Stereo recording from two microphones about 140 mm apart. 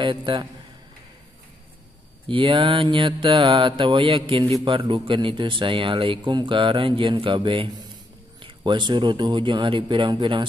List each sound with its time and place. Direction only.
0.0 s speech: 35° right (ahead or behind)
2.2 s speech: 35° right (ahead or behind)